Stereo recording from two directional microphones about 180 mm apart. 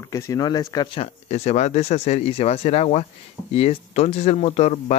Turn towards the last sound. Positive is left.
turn(degrees=40)  # may be behind; listen again after turning